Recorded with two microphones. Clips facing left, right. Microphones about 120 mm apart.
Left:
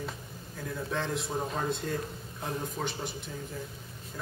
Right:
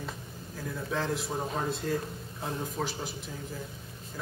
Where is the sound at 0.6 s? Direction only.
Centre (ahead or behind).